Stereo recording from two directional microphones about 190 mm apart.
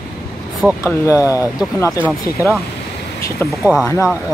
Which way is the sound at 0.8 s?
15° left (ahead or behind).